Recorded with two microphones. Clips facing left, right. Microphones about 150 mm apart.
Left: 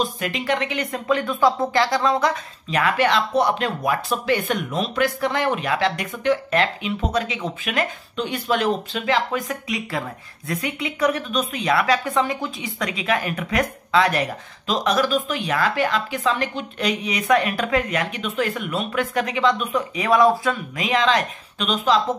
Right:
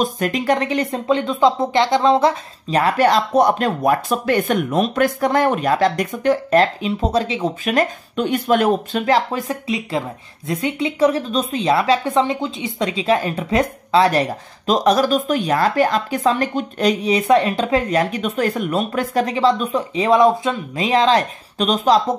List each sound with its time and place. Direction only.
0.0 s speech: 45° right (ahead or behind)